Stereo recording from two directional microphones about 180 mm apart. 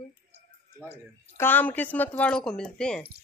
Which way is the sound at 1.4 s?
10° left (ahead or behind).